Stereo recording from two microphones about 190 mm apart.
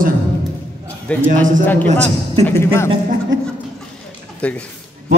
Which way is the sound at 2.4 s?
15° left (ahead or behind).